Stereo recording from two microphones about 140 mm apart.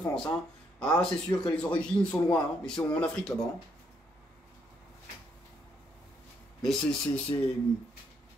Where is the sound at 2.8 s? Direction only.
25° left (ahead or behind).